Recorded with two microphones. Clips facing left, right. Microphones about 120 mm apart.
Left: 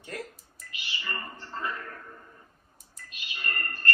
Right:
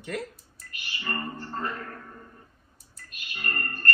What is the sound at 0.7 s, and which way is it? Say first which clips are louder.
Speech: right 4 dB; 50° right (ahead or behind).